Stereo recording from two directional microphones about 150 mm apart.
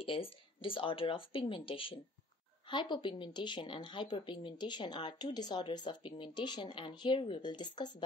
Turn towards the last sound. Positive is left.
turn(degrees=30)  # may be behind; listen again after turning